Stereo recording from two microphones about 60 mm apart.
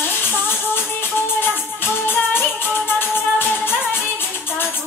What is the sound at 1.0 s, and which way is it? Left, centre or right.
Music, left.